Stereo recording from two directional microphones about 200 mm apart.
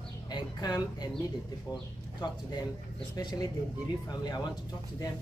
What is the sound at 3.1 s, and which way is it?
Speech, 20° left (ahead or behind).